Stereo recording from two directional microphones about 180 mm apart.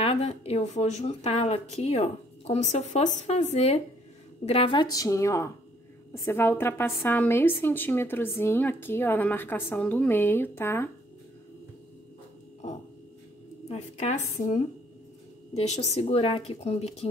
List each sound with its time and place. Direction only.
0.0 s a woman's voice: 35° left (ahead or behind); by 10.9 s 15° left (ahead or behind)
13.7 s speech: 40° left (ahead or behind)